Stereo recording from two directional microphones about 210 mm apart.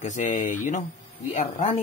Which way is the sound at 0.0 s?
35° left (ahead or behind).